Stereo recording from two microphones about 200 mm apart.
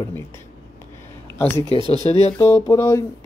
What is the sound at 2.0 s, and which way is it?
Speech, 35° left (ahead or behind).